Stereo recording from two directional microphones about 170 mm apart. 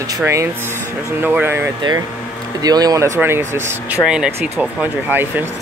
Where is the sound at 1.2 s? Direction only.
10° right (ahead or behind).